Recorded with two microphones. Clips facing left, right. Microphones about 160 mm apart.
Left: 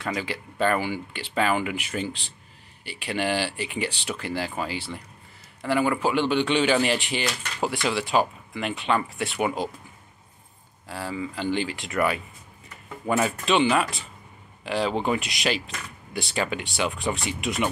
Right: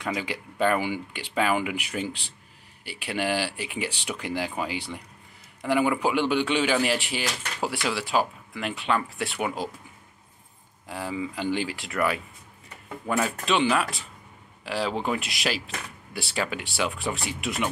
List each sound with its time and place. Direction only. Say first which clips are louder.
0.0 s speech: left 1 dB; 15° right (ahead or behind)
10.9 s speech: even; 15° right (ahead or behind)